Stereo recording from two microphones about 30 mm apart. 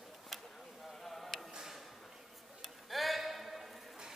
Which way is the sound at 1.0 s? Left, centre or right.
Centre.